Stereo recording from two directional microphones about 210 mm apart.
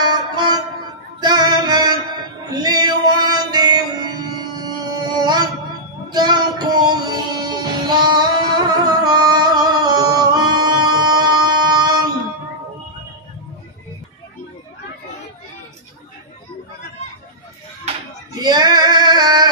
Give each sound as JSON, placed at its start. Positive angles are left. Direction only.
{"t": 0.0, "sound": "music", "side_deg": -20}
{"t": 18.4, "sound": "female singing", "side_deg": -20}